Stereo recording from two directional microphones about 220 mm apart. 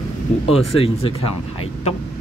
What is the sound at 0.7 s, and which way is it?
Speech, 25° left (ahead or behind).